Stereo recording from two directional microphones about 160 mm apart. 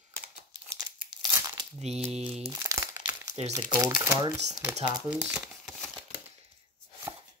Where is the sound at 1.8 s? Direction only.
40° right (ahead or behind).